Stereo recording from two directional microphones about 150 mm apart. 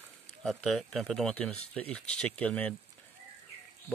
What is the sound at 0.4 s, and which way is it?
Speech, centre (ahead or behind).